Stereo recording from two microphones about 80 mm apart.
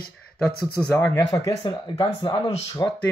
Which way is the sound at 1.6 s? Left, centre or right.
Left.